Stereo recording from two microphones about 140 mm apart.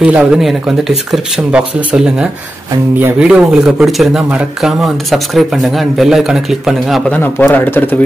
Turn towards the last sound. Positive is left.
turn(degrees=15)  # may be behind; listen again after turning